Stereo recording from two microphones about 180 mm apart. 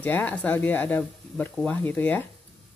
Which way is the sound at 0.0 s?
10° left (ahead or behind).